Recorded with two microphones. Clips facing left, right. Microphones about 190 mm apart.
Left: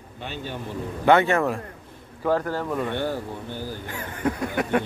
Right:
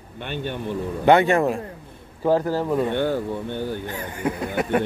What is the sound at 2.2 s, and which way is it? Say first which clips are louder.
Speech: right 4 dB; 30° right (ahead or behind).